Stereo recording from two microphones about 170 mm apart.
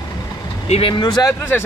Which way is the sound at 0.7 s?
30° left (ahead or behind).